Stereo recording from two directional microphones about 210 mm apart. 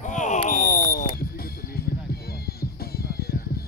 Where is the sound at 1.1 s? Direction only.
45° left (ahead or behind).